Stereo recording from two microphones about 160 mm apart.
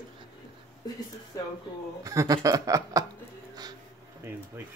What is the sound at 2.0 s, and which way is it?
Speech, 20° right (ahead or behind).